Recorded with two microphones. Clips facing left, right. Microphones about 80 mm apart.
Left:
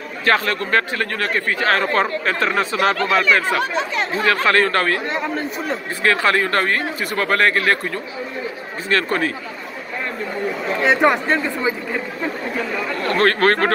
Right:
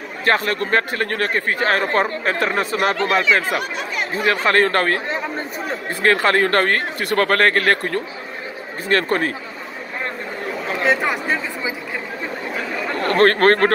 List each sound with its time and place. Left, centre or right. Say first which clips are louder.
0.2 s speech: even; right
3.0 s speech: right 1 dB; right
3.4 s speech: left 3 dB; centre
4.5 s speech: right 2 dB; right
6.0 s speech: right 1 dB; right
10.8 s speech: left 4 dB; centre
12.9 s speech: right 3 dB; right